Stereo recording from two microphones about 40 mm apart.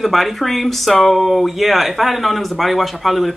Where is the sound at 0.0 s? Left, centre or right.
Centre.